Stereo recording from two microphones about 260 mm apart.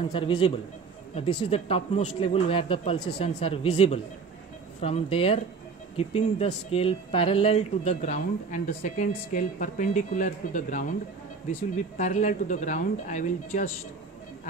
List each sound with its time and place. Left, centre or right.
0.1 s speech: centre
12.0 s speech: left